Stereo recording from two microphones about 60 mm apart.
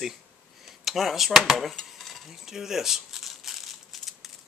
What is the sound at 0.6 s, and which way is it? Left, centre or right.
Cutlery, centre.